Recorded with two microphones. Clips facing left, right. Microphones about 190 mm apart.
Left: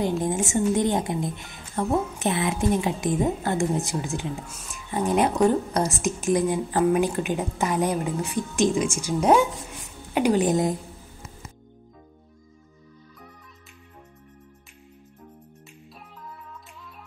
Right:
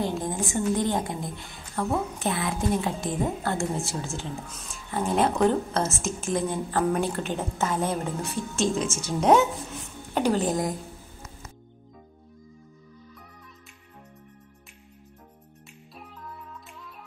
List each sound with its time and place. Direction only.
0.2 s a woman's voice: 20° left (ahead or behind)